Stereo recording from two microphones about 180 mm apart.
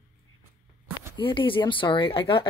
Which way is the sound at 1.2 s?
30° left (ahead or behind).